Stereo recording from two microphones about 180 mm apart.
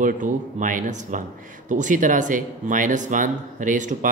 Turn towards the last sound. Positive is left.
turn(degrees=-45)  # may be behind; listen again after turning